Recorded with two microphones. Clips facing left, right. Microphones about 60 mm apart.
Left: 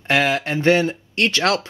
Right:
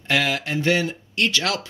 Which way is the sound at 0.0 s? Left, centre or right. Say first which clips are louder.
Left 4 dB; left.